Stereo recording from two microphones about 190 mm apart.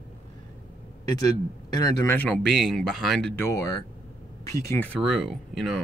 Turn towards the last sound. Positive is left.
turn(degrees=0)  # may be behind; listen again after turning